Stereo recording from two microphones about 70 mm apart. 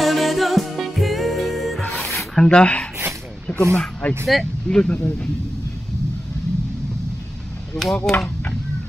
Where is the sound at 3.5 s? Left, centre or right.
Centre.